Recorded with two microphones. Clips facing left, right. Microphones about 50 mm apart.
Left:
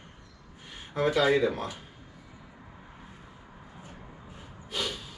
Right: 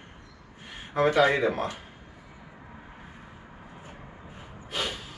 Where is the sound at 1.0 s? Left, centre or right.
Right.